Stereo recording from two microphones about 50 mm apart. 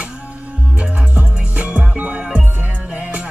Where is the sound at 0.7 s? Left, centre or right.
Right.